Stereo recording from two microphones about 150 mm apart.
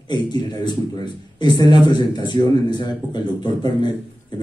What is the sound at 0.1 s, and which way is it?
Speech, 30° left (ahead or behind).